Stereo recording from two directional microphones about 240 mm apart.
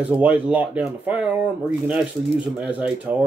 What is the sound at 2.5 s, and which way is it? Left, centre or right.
Speech, centre.